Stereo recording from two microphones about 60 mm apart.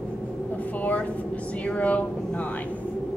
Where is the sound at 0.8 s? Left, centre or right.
Left.